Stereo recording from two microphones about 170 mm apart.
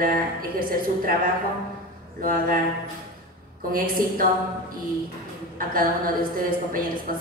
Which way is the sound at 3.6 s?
55° right (ahead or behind).